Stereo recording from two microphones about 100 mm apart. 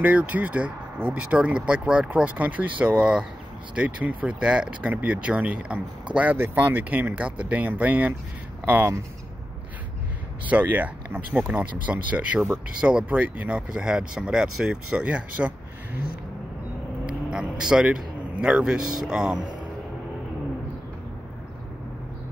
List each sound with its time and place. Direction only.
0.0 s speech: 15° right (ahead or behind)
10.4 s speech: 15° right (ahead or behind)
17.3 s a man's voice: 5° right (ahead or behind)